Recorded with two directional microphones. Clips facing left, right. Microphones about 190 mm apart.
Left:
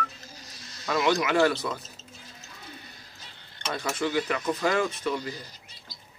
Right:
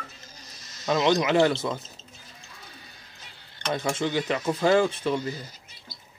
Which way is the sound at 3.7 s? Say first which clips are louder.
Right 1 dB; 25° right (ahead or behind).